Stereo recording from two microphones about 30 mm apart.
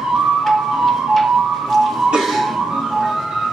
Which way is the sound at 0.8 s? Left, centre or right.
Centre.